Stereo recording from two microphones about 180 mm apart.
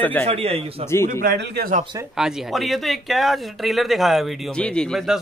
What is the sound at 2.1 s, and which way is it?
Speech, centre (ahead or behind).